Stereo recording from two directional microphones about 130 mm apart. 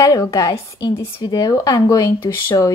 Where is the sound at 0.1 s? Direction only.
25° left (ahead or behind).